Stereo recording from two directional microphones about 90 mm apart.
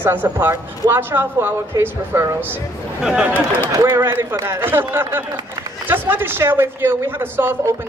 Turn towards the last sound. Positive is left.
turn(degrees=-25)  # may be behind; listen again after turning